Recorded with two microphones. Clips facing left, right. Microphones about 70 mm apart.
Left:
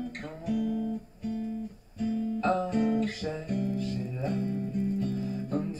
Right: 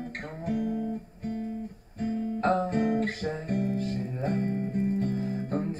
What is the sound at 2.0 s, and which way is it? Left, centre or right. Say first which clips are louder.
Guitar: right 1 dB; right.